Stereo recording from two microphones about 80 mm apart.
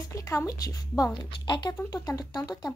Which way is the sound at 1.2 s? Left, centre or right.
Left.